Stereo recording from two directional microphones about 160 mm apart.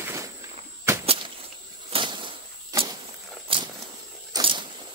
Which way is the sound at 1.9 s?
30° right (ahead or behind).